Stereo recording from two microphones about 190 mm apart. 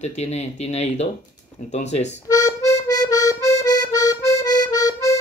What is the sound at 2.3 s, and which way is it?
Accordion, 20° left (ahead or behind).